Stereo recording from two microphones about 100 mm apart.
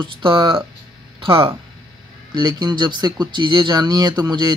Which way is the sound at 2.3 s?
45° right (ahead or behind).